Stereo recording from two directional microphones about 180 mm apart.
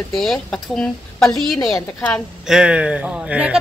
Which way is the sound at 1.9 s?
5° left (ahead or behind).